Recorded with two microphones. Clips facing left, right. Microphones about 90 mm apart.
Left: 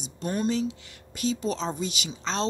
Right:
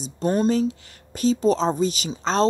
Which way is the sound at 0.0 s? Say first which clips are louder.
Right 7 dB; 35° right (ahead or behind).